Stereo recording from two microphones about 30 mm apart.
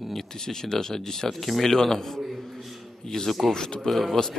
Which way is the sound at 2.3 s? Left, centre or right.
Centre.